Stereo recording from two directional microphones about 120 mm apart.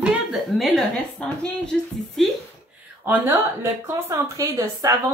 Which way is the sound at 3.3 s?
30° right (ahead or behind).